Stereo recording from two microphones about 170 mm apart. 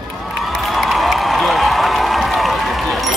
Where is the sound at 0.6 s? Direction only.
Centre (ahead or behind).